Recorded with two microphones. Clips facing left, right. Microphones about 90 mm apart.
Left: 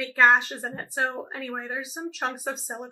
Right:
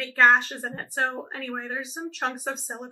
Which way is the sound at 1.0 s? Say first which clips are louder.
Even; 15° left (ahead or behind).